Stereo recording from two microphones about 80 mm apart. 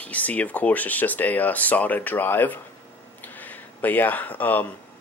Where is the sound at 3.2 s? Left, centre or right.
Left.